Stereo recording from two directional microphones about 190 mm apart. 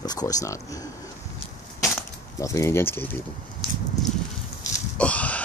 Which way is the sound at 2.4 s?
15° left (ahead or behind).